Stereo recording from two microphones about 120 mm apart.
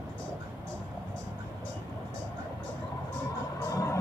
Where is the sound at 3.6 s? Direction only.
25° left (ahead or behind).